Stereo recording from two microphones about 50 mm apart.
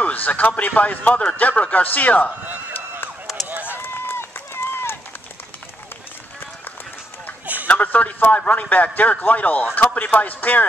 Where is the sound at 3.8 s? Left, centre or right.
Left.